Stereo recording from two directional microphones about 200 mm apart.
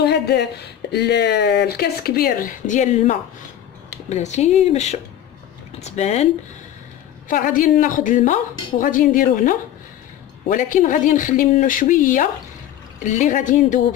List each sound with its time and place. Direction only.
0.0 s speech: 55° left (ahead or behind); by 6.2 s 35° left (ahead or behind)
7.2 s speech: 40° left (ahead or behind)